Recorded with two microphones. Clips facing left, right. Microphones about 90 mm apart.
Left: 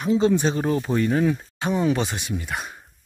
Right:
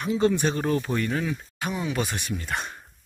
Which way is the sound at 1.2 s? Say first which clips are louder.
Left 7 dB; 40° left (ahead or behind).